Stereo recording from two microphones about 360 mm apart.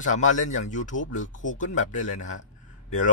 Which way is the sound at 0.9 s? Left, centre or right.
Left.